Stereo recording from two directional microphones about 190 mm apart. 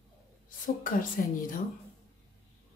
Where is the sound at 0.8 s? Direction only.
45° left (ahead or behind).